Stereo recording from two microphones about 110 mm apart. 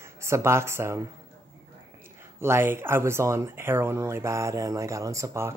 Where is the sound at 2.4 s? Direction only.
20° right (ahead or behind).